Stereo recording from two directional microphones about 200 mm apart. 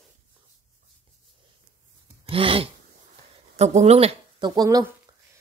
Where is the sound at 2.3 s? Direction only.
25° right (ahead or behind).